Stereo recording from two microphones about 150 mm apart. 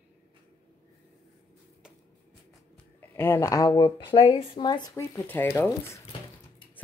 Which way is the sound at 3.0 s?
15° left (ahead or behind).